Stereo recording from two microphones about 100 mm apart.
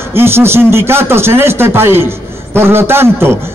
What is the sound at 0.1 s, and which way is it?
Speech, 25° right (ahead or behind).